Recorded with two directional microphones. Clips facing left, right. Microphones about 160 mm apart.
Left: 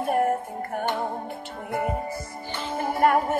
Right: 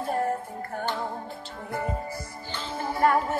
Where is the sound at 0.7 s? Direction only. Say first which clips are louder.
Left 3 dB; 20° left (ahead or behind).